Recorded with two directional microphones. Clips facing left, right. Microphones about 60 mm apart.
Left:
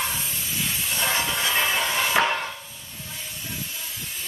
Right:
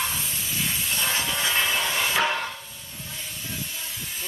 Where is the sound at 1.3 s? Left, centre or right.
Centre.